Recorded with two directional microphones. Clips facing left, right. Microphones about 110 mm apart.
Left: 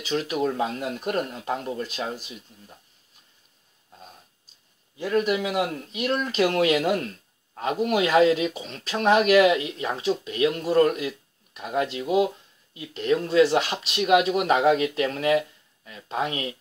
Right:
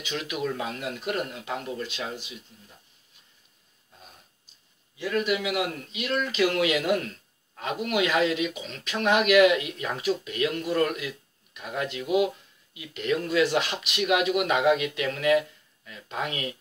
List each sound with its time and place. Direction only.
0.0 s speech: 35° left (ahead or behind)
4.9 s speech: 40° left (ahead or behind)